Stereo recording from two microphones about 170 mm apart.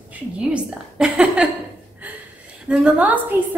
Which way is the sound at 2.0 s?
10° right (ahead or behind).